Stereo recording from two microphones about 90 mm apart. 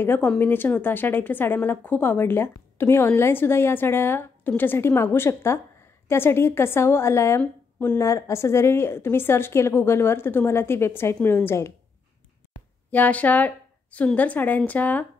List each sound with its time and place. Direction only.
0.0 s speech: 25° left (ahead or behind)
12.9 s a woman's voice: 20° left (ahead or behind)